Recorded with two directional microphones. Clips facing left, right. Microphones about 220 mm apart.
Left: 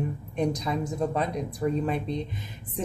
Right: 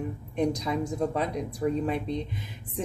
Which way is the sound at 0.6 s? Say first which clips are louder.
Even; 5° right (ahead or behind).